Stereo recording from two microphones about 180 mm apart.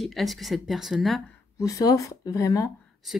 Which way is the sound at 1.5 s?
20° left (ahead or behind).